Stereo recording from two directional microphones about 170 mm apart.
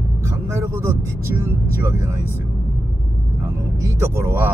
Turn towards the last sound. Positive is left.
turn(degrees=-15)  # may be behind; listen again after turning